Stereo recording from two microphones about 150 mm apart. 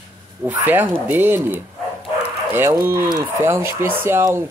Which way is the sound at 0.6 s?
15° right (ahead or behind).